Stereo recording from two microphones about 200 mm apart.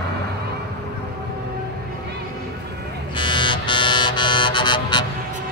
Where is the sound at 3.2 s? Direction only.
25° left (ahead or behind).